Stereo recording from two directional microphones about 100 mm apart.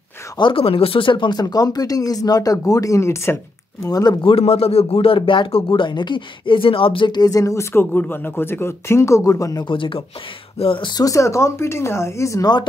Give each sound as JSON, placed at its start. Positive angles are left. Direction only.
{"t": 0.4, "sound": "speech", "side_deg": 60}
{"t": 3.8, "sound": "speech", "side_deg": 40}
{"t": 4.2, "sound": "speech", "side_deg": 70}
{"t": 7.2, "sound": "speech", "side_deg": 35}
{"t": 9.7, "sound": "speech", "side_deg": 60}
{"t": 10.9, "sound": "speech", "side_deg": 35}